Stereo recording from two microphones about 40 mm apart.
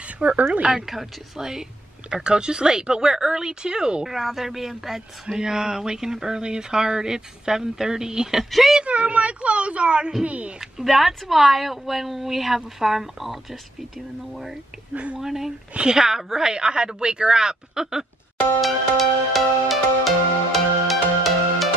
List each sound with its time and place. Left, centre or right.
0.2 s a woman's voice: right
0.7 s speech: centre
2.0 s speech: right
4.1 s speech: centre
8.5 s a woman's voice: centre
8.8 s a woman's voice: right
10.6 s a woman's voice: centre
18.6 s music: centre